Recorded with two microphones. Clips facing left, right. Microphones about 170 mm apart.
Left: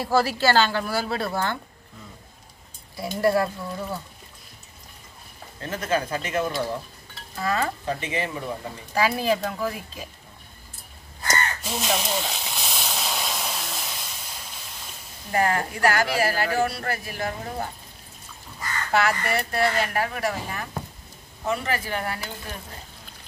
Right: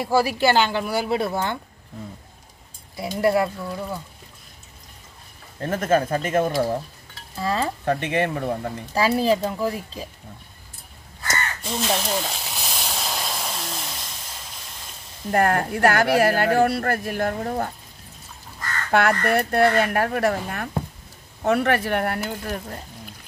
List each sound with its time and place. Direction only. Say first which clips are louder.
0.0 s speech: right 2 dB; 15° right (ahead or behind)
3.0 s speech: right 1 dB; 20° right (ahead or behind)
5.6 s speech: right 5 dB; 50° right (ahead or behind)
7.3 s speech: right 1 dB; 30° right (ahead or behind)
7.8 s speech: right 6 dB; 60° right (ahead or behind)
8.9 s a woman's voice: right 3 dB; 35° right (ahead or behind)
11.7 s hiss: right 3 dB; 5° left (ahead or behind)
15.3 s speech: right 3 dB; 60° right (ahead or behind)
18.9 s speech: right 4 dB; 55° right (ahead or behind)